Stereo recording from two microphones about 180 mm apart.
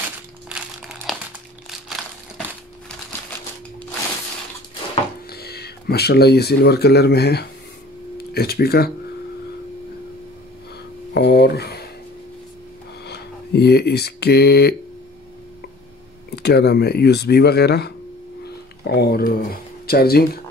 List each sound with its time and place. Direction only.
0.5 s crumpling: 5° right (ahead or behind)
1.9 s a sound: centre (ahead or behind)
5.3 s speech: 60° left (ahead or behind)
11.1 s a sound: 60° left (ahead or behind)
13.0 s speech: 65° left (ahead or behind)
16.3 s speech: 65° left (ahead or behind)